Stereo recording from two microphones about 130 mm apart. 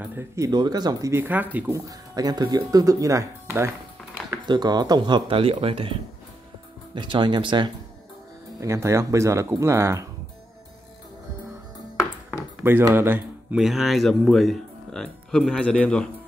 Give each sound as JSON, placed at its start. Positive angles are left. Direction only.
{"t": 0.0, "sound": "speech", "side_deg": -15}
{"t": 0.5, "sound": "speech", "side_deg": -30}
{"t": 1.1, "sound": "speech", "side_deg": -15}
{"t": 1.9, "sound": "speech", "side_deg": -30}
{"t": 4.3, "sound": "speech", "side_deg": -30}
{"t": 7.0, "sound": "speech", "side_deg": -35}
{"t": 8.5, "sound": "speech", "side_deg": -20}
{"t": 12.9, "sound": "speech", "side_deg": -15}
{"t": 13.6, "sound": "speech", "side_deg": 0}